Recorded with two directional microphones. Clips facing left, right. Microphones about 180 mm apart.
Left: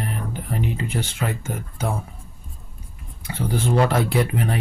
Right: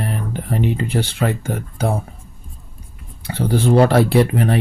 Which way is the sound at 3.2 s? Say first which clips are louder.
Right 6 dB; 35° right (ahead or behind).